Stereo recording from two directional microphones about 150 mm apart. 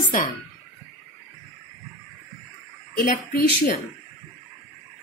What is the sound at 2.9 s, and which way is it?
Speech, 75° left (ahead or behind).